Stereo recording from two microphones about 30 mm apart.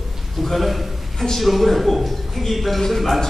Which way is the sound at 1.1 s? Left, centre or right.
Centre.